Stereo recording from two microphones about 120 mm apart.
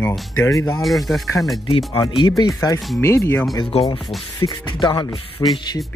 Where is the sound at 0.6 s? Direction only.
25° left (ahead or behind).